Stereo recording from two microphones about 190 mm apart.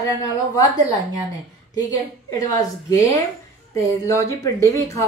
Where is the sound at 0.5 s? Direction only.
20° left (ahead or behind).